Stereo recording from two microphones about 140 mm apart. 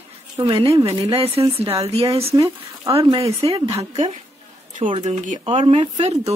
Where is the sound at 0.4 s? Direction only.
40° right (ahead or behind).